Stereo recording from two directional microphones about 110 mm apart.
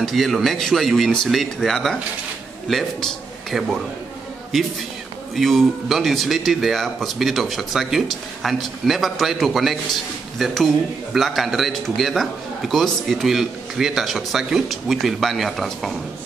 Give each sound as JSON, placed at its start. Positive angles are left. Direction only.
{"t": 0.0, "sound": "a man's voice", "side_deg": 0}